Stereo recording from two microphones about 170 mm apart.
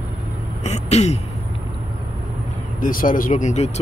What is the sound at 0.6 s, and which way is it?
Speech, 40° left (ahead or behind).